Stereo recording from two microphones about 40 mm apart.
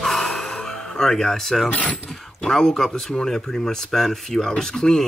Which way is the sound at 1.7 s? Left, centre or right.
Left.